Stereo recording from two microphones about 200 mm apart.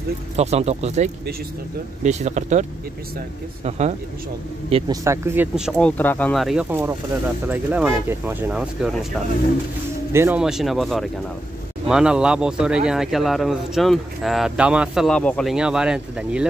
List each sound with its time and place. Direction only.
0.4 s speech: 30° right (ahead or behind)
3.6 s a man's voice: 35° right (ahead or behind)
5.0 s speech: 15° right (ahead or behind)
5.8 s speech: 5° left (ahead or behind)
10.1 s speech: 10° right (ahead or behind)